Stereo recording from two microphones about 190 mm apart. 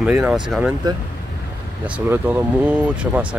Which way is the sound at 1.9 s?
10° right (ahead or behind).